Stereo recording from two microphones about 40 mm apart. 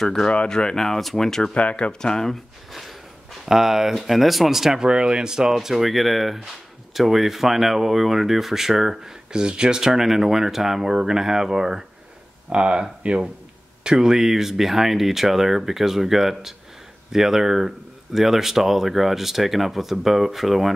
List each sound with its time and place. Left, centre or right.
0.0 s speech: centre
1.5 s speech: left
2.0 s speech: centre
2.7 s a sound: centre
3.4 s speech: centre
4.7 s speech: centre
9.3 s speech: right
9.8 s speech: centre
12.4 s speech: right
13.8 s speech: centre